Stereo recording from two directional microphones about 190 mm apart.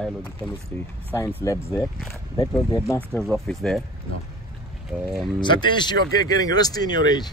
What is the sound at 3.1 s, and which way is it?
Speech, centre (ahead or behind).